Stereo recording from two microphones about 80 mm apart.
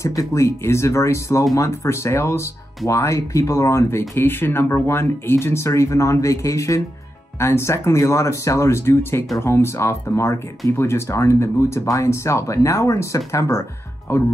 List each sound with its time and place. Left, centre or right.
0.0 s speech: left
4.2 s speech: left